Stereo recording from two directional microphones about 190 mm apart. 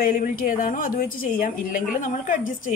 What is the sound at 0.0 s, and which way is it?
A woman's voice, 45° left (ahead or behind).